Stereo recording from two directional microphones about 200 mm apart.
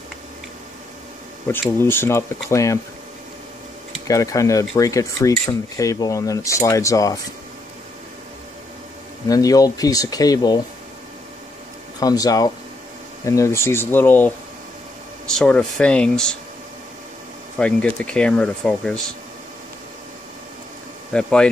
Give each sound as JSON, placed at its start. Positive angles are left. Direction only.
{"t": 1.5, "sound": "speech", "side_deg": 10}
{"t": 4.1, "sound": "speech", "side_deg": 15}
{"t": 9.3, "sound": "speech", "side_deg": 15}
{"t": 12.0, "sound": "speech", "side_deg": 20}
{"t": 17.6, "sound": "speech", "side_deg": 5}
{"t": 21.1, "sound": "speech", "side_deg": 5}